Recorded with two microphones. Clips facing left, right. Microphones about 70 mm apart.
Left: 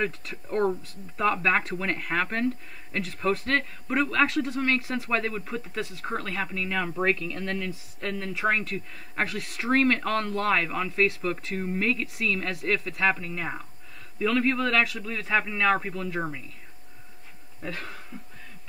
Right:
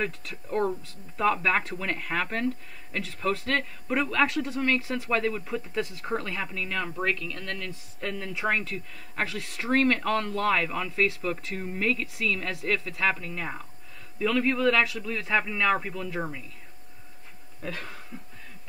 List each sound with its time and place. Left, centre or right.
0.0 s speech: centre
7.0 s speech: left
7.5 s speech: centre
8.0 s speech: centre
16.2 s speech: centre
17.6 s speech: centre